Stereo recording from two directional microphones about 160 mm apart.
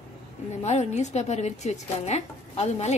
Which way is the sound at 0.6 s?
45° left (ahead or behind).